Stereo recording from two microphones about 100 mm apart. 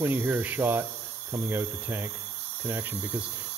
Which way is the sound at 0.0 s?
20° right (ahead or behind).